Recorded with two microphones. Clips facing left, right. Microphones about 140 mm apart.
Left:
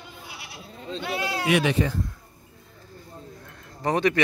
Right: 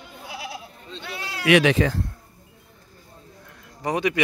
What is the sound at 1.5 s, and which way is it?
Speech, 90° right.